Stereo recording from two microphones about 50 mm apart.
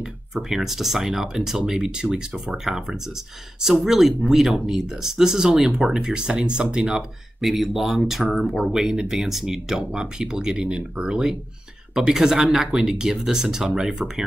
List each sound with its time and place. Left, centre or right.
0.3 s speech: centre
7.4 s speech: centre